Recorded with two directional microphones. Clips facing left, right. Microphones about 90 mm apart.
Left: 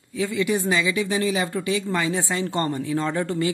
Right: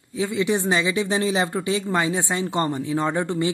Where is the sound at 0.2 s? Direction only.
20° right (ahead or behind).